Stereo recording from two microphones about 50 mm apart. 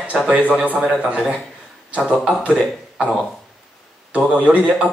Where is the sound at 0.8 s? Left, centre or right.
Right.